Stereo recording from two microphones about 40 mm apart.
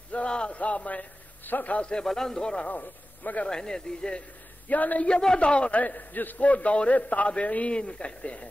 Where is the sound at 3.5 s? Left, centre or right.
Centre.